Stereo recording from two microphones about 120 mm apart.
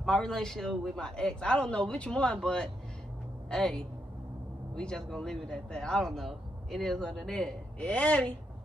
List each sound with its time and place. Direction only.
0.0 s a woman's voice: 5° left (ahead or behind)